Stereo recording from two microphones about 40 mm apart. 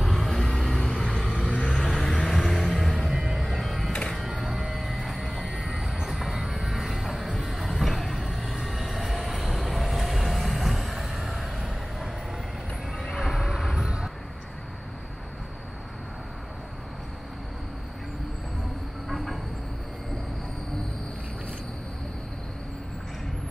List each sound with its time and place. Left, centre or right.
0.0 s vehicle: centre
1.7 s music: centre
3.1 s music: centre
5.7 s train: centre
13.1 s neigh: centre
13.8 s vehicle: centre
19.0 s train: centre